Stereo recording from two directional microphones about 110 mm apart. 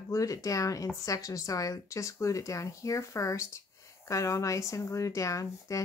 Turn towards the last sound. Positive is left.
turn(degrees=30)  # may be behind; listen again after turning